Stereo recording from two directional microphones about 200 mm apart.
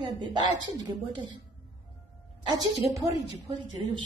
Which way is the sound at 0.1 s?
20° right (ahead or behind).